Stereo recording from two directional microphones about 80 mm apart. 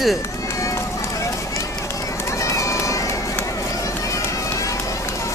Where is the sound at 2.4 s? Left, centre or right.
Left.